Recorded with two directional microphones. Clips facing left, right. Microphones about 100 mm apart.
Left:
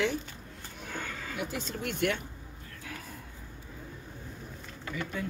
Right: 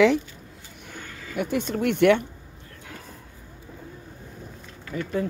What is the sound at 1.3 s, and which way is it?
Speech, 60° right (ahead or behind).